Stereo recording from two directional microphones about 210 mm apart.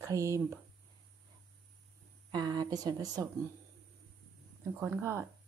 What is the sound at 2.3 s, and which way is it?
Speech, 20° right (ahead or behind).